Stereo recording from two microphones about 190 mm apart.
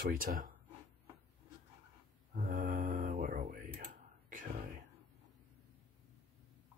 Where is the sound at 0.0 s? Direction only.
50° right (ahead or behind).